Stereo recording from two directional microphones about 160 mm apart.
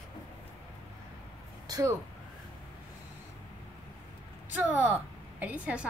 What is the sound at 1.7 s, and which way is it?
Speech, 20° right (ahead or behind).